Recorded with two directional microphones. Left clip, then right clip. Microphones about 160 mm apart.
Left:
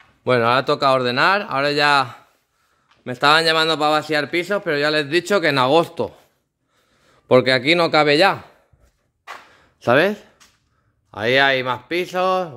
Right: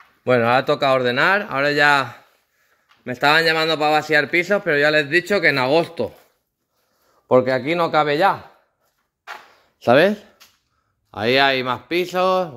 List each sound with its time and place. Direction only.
0.2 s speech: 15° left (ahead or behind)
7.2 s a man's voice: 35° left (ahead or behind)
9.8 s a man's voice: centre (ahead or behind)